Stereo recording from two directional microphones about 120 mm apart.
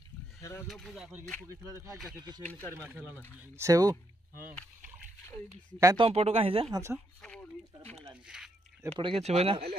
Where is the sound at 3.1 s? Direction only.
20° left (ahead or behind).